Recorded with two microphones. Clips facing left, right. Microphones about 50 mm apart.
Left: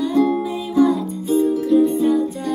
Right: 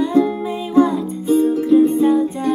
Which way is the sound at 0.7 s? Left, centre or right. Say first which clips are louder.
Right 2 dB; right.